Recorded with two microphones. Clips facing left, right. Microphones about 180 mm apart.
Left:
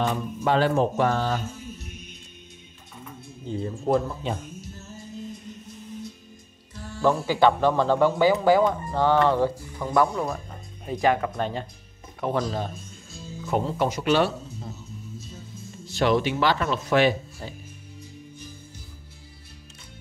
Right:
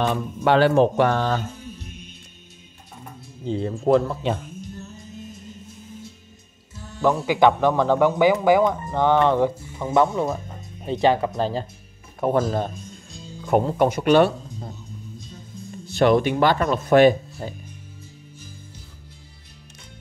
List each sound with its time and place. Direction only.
0.0 s speech: 75° right (ahead or behind)
3.4 s speech: 85° right
7.2 s speech: 15° right (ahead or behind)
12.2 s speech: 45° right (ahead or behind)
12.7 s music: centre (ahead or behind)
13.5 s speech: 55° right (ahead or behind)
15.9 s speech: 55° right (ahead or behind)